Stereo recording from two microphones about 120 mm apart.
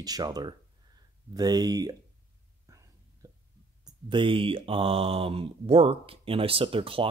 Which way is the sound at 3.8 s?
45° right (ahead or behind).